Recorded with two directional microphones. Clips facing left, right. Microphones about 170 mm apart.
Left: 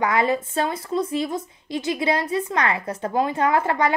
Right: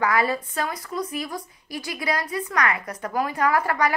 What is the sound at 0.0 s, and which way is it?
A woman's voice, 20° left (ahead or behind).